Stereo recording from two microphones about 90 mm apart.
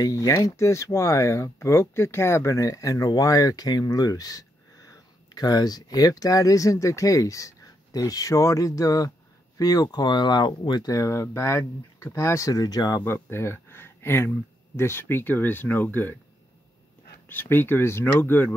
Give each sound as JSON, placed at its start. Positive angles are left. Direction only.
{"t": 0.0, "sound": "speech", "side_deg": 40}
{"t": 10.9, "sound": "speech", "side_deg": 35}
{"t": 13.0, "sound": "speech", "side_deg": 25}
{"t": 17.3, "sound": "speech", "side_deg": 20}